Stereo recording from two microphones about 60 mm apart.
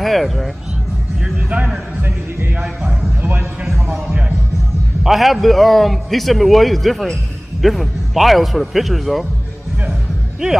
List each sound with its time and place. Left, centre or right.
0.0 s a man's voice: centre
2.6 s a man's voice: centre
3.2 s a man's voice: right
3.6 s speech: centre
5.0 s a man's voice: centre